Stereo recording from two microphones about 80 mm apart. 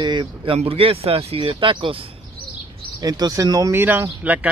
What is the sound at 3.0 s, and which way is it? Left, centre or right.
Speech, right.